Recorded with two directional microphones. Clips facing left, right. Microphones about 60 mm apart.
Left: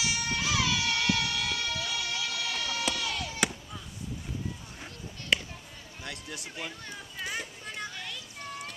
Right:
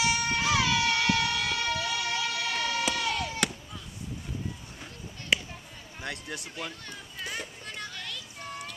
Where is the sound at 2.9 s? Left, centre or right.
Right.